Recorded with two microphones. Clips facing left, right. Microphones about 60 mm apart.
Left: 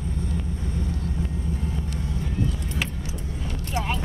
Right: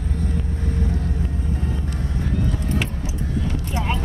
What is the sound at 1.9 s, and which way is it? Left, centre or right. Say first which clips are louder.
Music: right 3 dB; right.